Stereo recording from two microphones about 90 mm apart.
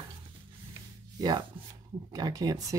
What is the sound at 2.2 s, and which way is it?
Speech, 45° right (ahead or behind).